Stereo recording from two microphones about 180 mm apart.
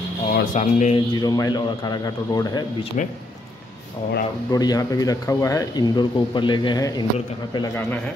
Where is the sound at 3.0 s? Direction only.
40° left (ahead or behind).